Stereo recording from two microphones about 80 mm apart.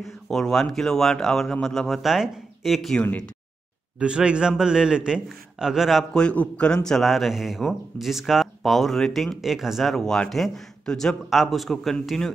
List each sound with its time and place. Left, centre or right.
0.0 s a man's voice: centre
3.0 s speech: centre
4.0 s a man's voice: centre
6.1 s a man's voice: centre